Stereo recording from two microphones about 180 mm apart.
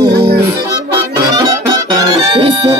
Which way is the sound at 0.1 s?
65° right (ahead or behind).